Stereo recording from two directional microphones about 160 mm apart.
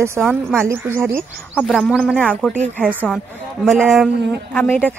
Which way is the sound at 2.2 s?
10° left (ahead or behind).